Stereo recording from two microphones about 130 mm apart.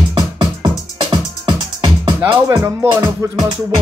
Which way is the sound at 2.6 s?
25° right (ahead or behind).